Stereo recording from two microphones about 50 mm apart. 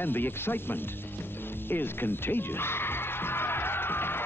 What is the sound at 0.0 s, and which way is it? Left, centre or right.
Speech, left.